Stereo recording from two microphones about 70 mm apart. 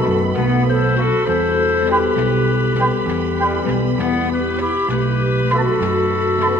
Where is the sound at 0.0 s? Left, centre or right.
Right.